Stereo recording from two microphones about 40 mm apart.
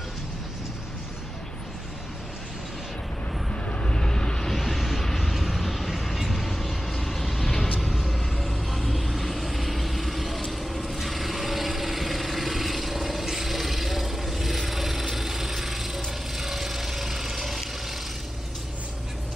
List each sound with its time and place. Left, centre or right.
3.6 s vehicle: left
4.5 s a sound: centre
5.0 s vehicle: centre